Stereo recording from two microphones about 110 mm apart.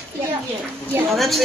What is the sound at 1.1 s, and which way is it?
Speech, centre (ahead or behind).